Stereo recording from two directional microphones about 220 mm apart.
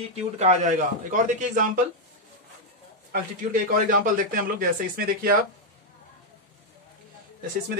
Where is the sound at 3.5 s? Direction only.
40° right (ahead or behind).